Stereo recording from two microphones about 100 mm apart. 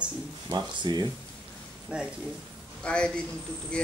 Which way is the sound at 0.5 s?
45° right (ahead or behind).